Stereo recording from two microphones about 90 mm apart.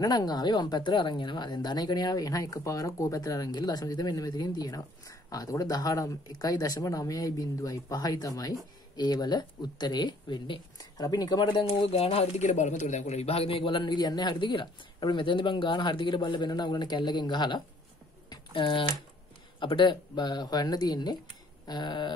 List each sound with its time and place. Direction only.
0.0 s a woman's voice: 50° left (ahead or behind); by 11.7 s 65° left (ahead or behind)
11.9 s speech: 90° left
13.3 s speech: 90° left; by 17.6 s 55° left (ahead or behind)
18.3 s a sound: 65° left (ahead or behind)
19.6 s a woman's voice: 60° left (ahead or behind)